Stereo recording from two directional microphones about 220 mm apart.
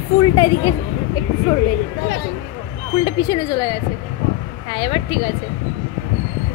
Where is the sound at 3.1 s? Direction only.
20° left (ahead or behind).